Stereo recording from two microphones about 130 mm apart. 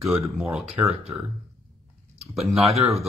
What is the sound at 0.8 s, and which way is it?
Speech, 15° right (ahead or behind).